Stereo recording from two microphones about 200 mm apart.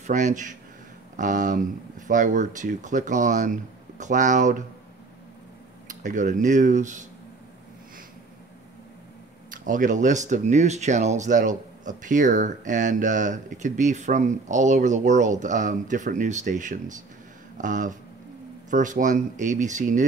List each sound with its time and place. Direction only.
0.0 s speech: 40° right (ahead or behind)
5.9 s speech: 40° right (ahead or behind)
9.5 s speech: 40° right (ahead or behind)